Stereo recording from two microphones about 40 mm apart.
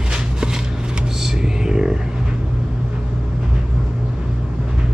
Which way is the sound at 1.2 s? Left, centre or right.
Centre.